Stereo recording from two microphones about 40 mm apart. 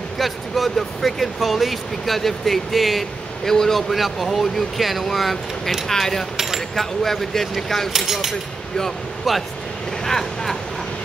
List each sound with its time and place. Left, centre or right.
0.2 s speech: centre
3.9 s speech: centre
5.9 s speech: centre
6.3 s a sound: centre
6.7 s speech: centre
7.9 s speech: centre
10.0 s vehicle: centre